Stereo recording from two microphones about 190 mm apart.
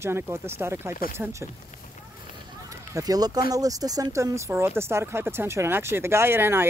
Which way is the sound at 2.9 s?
20° right (ahead or behind).